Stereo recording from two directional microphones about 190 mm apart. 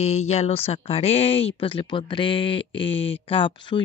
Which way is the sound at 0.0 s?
35° left (ahead or behind).